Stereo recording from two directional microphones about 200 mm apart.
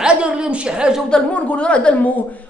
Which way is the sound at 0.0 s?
5° right (ahead or behind).